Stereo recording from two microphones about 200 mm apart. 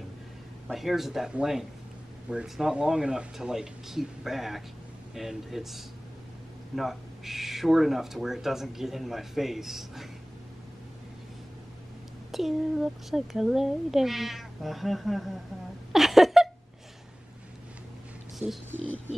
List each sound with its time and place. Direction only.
0.7 s speech: centre (ahead or behind)
12.3 s speech: centre (ahead or behind)
15.9 s a sound: centre (ahead or behind)
18.4 s speech: 10° right (ahead or behind)